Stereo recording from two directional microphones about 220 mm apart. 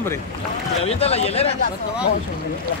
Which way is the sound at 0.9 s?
30° left (ahead or behind).